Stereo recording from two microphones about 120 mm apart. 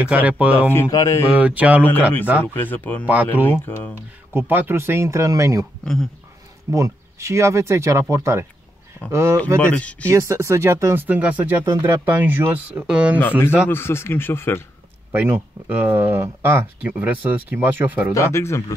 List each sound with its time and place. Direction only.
0.0 s speech: 10° right (ahead or behind)
0.7 s speech: 25° left (ahead or behind)
1.3 s speech: 10° right (ahead or behind)
2.4 s speech: 15° left (ahead or behind)
4.3 s speech: 20° right (ahead or behind)
6.7 s speech: 25° right (ahead or behind)
9.6 s speech: 10° left (ahead or behind)
10.0 s speech: 25° right (ahead or behind)
13.7 s speech: 20° left (ahead or behind)
15.1 s speech: 15° right (ahead or behind)
18.1 s speech: 25° left (ahead or behind)